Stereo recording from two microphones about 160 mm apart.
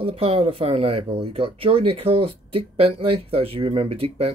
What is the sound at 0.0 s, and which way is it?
Speech, 35° right (ahead or behind).